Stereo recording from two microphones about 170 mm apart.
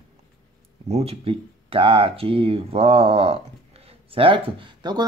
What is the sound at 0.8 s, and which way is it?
Speech, 40° right (ahead or behind).